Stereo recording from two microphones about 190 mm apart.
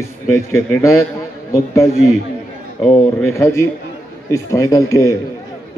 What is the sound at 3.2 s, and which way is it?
A man's voice, 15° left (ahead or behind).